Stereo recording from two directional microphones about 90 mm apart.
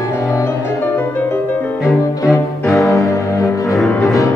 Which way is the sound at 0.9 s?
20° left (ahead or behind).